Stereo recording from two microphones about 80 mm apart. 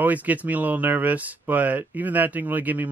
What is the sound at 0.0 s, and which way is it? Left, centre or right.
Speech, centre.